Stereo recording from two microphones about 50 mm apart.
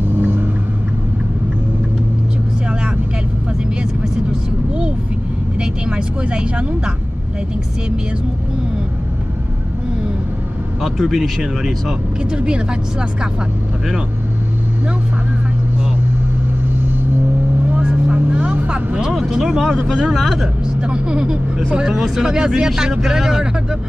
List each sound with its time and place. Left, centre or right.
0.2 s vehicle: right
4.3 s vehicle: right
10.8 s speech: centre
12.3 s speech: centre
17.8 s vehicle: centre
19.1 s speech: centre
20.2 s speech: centre
20.6 s speech: centre